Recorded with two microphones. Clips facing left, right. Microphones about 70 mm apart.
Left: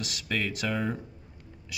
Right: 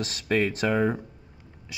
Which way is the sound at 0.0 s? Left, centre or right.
Right.